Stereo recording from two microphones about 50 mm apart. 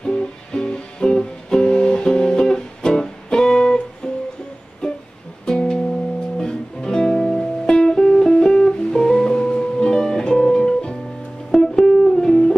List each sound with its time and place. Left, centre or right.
0.0 s music: centre
4.8 s music: centre